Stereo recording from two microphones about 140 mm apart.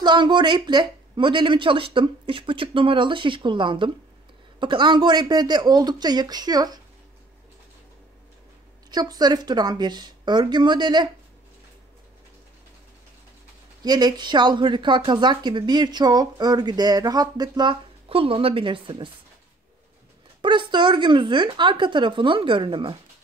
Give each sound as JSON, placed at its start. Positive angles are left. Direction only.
{"t": 0.0, "sound": "speech", "side_deg": -35}
{"t": 8.9, "sound": "speech", "side_deg": -30}
{"t": 13.8, "sound": "speech", "side_deg": -30}
{"t": 20.4, "sound": "speech", "side_deg": -35}